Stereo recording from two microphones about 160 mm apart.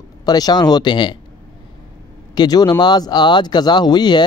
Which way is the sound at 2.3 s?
25° left (ahead or behind).